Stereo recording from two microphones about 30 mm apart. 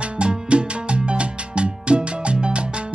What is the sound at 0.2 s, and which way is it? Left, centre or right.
Music, right.